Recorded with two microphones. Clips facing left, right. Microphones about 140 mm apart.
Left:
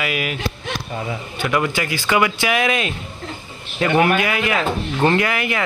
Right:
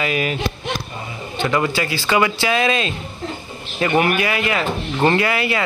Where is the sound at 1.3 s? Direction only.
20° right (ahead or behind).